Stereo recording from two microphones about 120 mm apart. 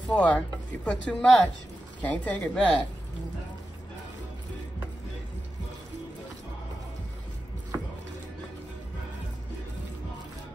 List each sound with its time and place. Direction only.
0.1 s a woman's voice: 10° left (ahead or behind)
7.7 s chopping: 25° right (ahead or behind)